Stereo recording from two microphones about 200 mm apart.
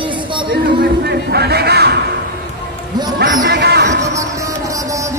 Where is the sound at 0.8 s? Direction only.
55° right (ahead or behind).